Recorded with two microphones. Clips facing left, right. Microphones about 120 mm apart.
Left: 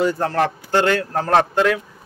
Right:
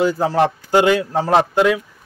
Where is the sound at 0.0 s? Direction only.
5° right (ahead or behind).